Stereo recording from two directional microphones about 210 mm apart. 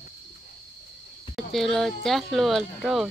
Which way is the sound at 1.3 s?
Centre (ahead or behind).